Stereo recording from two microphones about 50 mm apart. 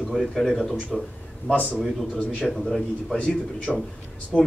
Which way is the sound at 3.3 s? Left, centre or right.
Left.